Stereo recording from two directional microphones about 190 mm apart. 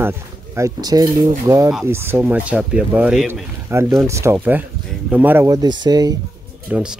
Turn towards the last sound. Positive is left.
turn(degrees=-5)  # may be behind; listen again after turning